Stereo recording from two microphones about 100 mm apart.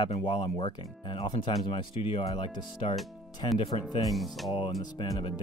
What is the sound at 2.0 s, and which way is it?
Speech, 70° left (ahead or behind).